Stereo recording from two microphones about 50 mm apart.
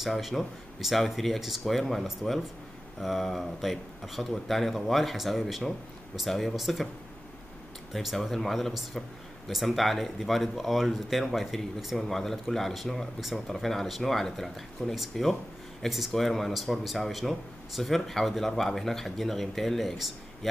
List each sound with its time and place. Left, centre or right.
0.0 s a man's voice: centre
7.9 s a man's voice: centre